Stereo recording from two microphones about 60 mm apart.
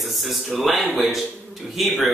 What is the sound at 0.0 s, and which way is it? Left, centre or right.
A man's voice, centre.